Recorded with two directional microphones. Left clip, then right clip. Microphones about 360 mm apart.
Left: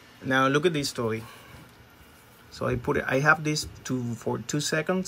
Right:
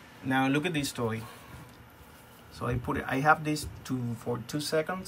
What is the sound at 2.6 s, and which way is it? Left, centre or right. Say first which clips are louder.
Speech: left 6 dB; centre.